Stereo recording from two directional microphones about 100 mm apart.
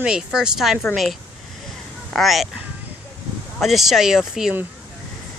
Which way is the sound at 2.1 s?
Centre (ahead or behind).